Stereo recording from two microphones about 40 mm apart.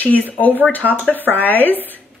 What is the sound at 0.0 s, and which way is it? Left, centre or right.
Speech, left.